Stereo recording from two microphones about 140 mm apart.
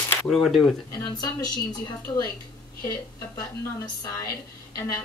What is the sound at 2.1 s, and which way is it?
Speech, 25° left (ahead or behind).